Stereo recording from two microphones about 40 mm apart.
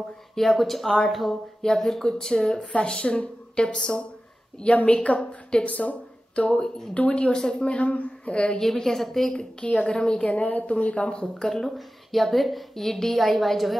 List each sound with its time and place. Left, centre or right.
0.4 s a woman's voice: centre
1.6 s a woman's voice: centre
4.8 s a woman's voice: left
7.2 s a woman's voice: left
8.5 s a woman's voice: centre
9.7 s a woman's voice: left
10.4 s speech: left
11.3 s a woman's voice: centre
11.6 s a woman's voice: centre